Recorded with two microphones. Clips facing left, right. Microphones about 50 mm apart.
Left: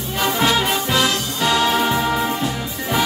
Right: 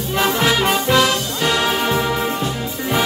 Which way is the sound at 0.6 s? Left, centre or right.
Right.